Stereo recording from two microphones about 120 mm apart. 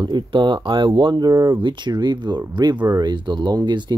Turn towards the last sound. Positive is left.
turn(degrees=-40)  # may be behind; listen again after turning